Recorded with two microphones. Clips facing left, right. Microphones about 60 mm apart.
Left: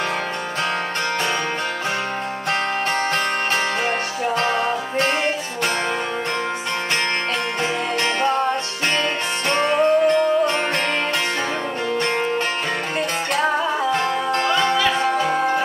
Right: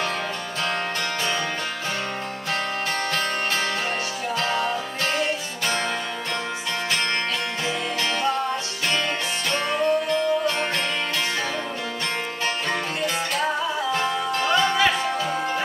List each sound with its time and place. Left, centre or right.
4.4 s music: left
9.5 s music: left
13.9 s music: left